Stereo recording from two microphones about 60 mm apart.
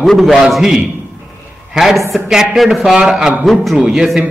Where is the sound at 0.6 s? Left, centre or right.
Centre.